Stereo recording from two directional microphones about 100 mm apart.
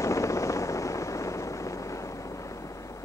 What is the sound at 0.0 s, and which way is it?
Vehicle, 30° left (ahead or behind).